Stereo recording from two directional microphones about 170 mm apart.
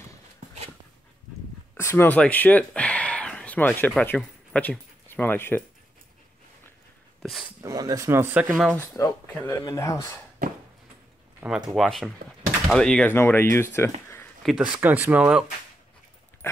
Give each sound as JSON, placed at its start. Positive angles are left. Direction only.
{"t": 1.8, "sound": "speech", "side_deg": 15}
{"t": 7.2, "sound": "speech", "side_deg": 0}
{"t": 7.6, "sound": "speech", "side_deg": -20}
{"t": 8.7, "sound": "speech", "side_deg": 20}
{"t": 11.7, "sound": "speech", "side_deg": 0}
{"t": 14.4, "sound": "speech", "side_deg": -5}